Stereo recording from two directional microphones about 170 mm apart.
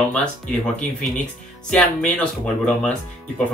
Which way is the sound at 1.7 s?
5° left (ahead or behind).